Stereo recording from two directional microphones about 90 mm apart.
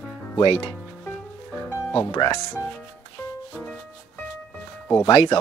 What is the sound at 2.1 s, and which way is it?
Speech, 45° left (ahead or behind).